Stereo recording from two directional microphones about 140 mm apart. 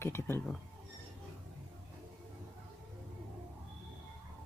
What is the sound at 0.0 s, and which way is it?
Speech, 15° left (ahead or behind).